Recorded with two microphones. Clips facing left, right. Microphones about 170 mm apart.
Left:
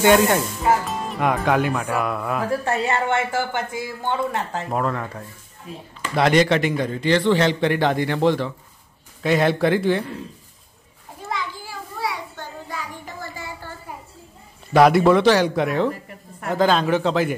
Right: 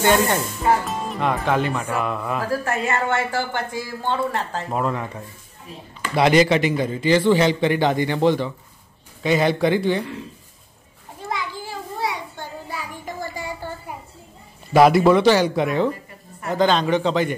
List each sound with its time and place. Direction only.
0.0 s a man's voice: 5° left (ahead or behind)
2.5 s speech: 30° left (ahead or behind)
4.6 s a man's voice: 5° right (ahead or behind)
11.5 s children playing: 20° right (ahead or behind)
14.7 s a man's voice: 5° right (ahead or behind)